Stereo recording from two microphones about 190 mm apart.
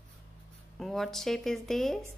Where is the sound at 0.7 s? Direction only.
Centre (ahead or behind).